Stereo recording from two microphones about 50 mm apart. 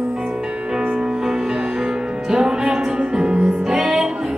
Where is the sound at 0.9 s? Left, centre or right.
Centre.